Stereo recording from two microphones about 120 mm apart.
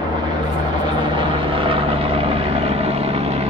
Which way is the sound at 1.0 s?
45° right (ahead or behind).